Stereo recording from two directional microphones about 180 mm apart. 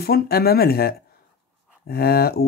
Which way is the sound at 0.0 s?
60° left (ahead or behind).